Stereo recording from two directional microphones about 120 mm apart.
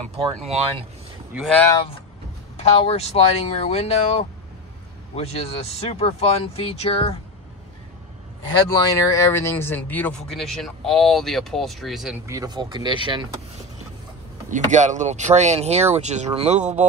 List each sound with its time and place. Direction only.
0.4 s speech: 60° right (ahead or behind)
1.3 s speech: 10° right (ahead or behind)
2.5 s speech: 55° left (ahead or behind)
8.6 s speech: 25° left (ahead or behind)
10.3 s speech: centre (ahead or behind)
12.3 s speech: 30° right (ahead or behind)
14.5 s speech: 75° right (ahead or behind)